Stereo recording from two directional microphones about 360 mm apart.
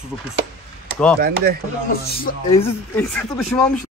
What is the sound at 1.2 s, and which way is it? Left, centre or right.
Speech, right.